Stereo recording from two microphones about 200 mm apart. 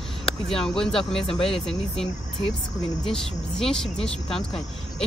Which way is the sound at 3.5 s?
5° left (ahead or behind).